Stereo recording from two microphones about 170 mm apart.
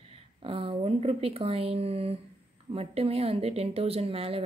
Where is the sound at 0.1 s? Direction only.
30° right (ahead or behind).